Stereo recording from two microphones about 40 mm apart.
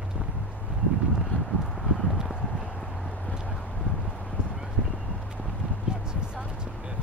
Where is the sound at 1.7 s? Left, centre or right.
Centre.